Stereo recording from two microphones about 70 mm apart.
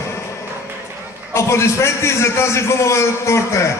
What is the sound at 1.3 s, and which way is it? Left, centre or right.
A man's voice, left.